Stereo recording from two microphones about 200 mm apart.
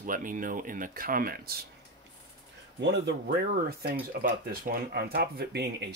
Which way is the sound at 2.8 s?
60° right (ahead or behind).